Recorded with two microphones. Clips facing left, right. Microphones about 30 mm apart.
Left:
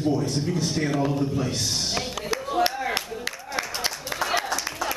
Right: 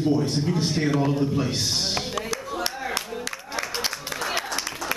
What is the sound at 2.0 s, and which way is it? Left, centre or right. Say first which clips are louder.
Music: right 2 dB; centre.